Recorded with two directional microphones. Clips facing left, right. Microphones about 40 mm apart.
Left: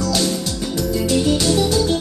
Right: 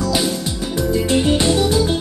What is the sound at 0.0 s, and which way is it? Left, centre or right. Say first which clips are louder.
Music: right 1 dB; centre.